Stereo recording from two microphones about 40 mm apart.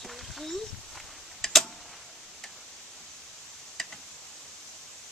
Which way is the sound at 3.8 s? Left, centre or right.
Centre.